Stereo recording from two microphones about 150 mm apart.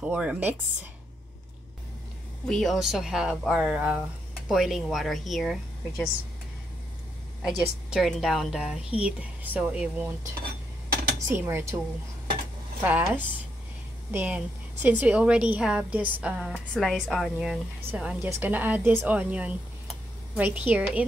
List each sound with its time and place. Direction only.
0.0 s a woman's voice: 10° right (ahead or behind)
2.4 s a woman's voice: 5° left (ahead or behind)
7.4 s a woman's voice: 5° right (ahead or behind)
11.1 s a woman's voice: 20° right (ahead or behind)
12.8 s a woman's voice: 15° right (ahead or behind)